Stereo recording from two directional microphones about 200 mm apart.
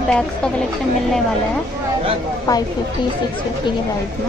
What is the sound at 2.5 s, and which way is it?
Speech, 20° left (ahead or behind).